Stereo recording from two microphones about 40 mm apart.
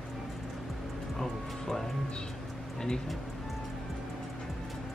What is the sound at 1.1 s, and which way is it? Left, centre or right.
Music, centre.